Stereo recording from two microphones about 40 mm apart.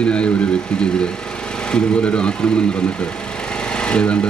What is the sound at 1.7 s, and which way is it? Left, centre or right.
Speech, left.